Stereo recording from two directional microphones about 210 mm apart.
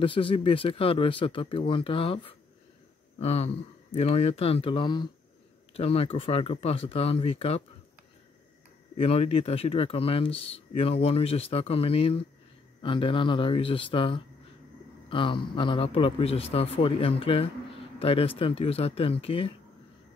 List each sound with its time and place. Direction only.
0.0 s speech: 25° left (ahead or behind)
8.9 s speech: 30° left (ahead or behind)